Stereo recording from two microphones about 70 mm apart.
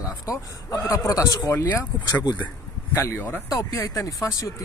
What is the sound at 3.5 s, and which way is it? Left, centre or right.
A man's voice, left.